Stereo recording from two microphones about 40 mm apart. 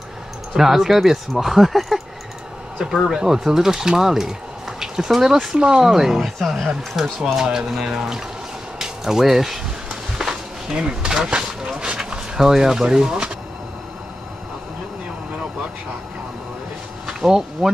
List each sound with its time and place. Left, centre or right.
0.6 s speech: centre
2.8 s speech: centre
8.7 s a sound: centre
11.2 s vehicle: right
12.0 s speech: centre
17.0 s speech: centre